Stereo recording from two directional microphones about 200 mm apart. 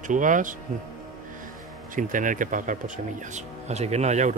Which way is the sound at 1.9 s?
40° right (ahead or behind).